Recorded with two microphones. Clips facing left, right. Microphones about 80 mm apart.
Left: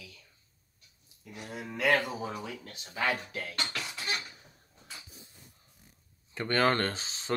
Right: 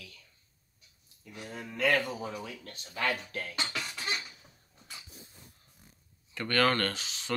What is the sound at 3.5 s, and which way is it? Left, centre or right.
Beatboxing, centre.